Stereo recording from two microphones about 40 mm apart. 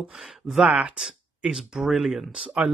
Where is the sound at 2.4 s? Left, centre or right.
Right.